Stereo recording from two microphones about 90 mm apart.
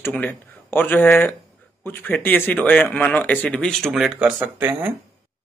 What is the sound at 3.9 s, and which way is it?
Speech, 5° right (ahead or behind).